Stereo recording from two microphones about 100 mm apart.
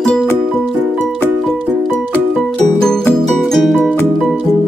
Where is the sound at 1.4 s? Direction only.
5° left (ahead or behind).